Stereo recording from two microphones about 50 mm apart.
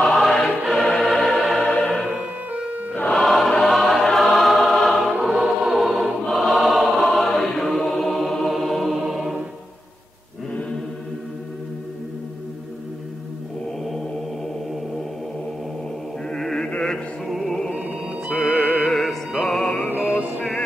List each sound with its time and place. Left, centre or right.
0.0 s choir: centre
1.7 s music: centre
2.0 s music: right
3.1 s choir: centre
8.9 s music: centre
13.8 s mantra: centre
16.3 s chant: centre
16.6 s music: centre
17.3 s music: centre